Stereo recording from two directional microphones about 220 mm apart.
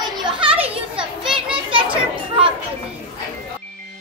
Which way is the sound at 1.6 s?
25° right (ahead or behind).